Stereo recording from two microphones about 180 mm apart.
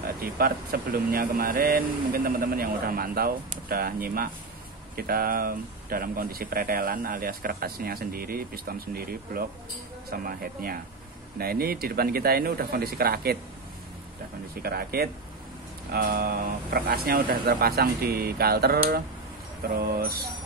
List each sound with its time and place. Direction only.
0.0 s speech: 55° right (ahead or behind)
14.5 s speech: 60° right (ahead or behind)